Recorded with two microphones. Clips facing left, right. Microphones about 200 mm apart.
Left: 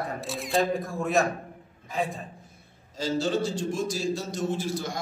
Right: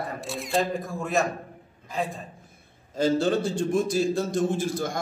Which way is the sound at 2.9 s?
55° right (ahead or behind).